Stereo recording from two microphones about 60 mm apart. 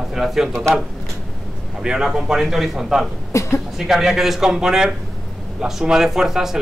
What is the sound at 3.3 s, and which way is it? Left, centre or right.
Speech, left.